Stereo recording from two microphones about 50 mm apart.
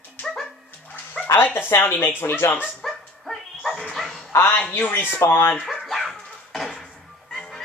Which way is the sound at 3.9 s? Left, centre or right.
Centre.